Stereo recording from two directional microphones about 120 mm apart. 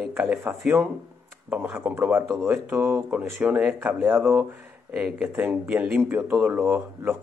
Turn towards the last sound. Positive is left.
turn(degrees=-15)  # may be behind; listen again after turning